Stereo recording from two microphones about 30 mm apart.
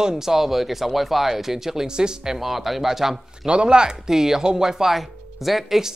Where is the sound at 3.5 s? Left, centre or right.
Right.